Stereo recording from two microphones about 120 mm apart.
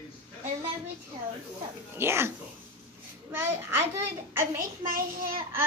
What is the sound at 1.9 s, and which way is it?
Speech, 20° right (ahead or behind).